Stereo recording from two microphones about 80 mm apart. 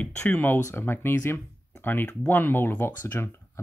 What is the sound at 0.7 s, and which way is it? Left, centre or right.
Speech, left.